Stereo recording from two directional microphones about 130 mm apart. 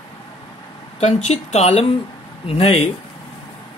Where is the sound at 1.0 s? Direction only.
60° left (ahead or behind); by 2.8 s 45° left (ahead or behind).